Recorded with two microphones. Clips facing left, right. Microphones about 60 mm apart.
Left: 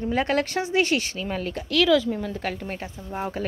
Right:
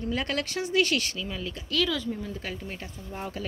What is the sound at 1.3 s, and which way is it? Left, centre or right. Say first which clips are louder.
Speech: left 6 dB; left.